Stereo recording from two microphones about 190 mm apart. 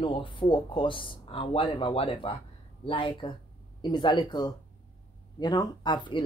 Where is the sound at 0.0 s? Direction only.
25° left (ahead or behind).